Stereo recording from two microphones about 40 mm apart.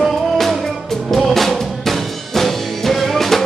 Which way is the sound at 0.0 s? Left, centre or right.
Centre.